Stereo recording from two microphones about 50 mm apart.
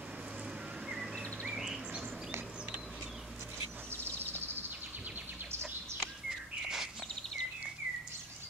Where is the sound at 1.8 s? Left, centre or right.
Centre.